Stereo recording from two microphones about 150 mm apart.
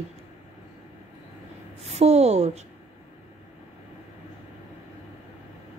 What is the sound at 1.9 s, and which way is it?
Speech, 45° right (ahead or behind).